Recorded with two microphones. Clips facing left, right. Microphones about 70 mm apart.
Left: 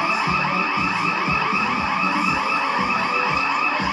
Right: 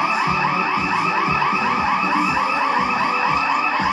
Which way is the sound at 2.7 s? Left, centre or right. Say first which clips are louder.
Right 2 dB; centre.